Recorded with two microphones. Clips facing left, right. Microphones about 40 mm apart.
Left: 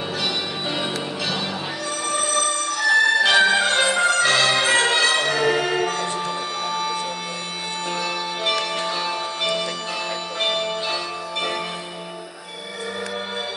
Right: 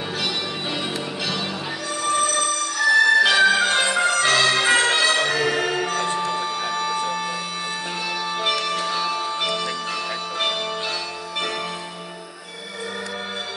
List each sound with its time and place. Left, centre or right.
0.2 s music: centre
2.0 s a sound: centre
2.9 s music: centre
8.4 s music: centre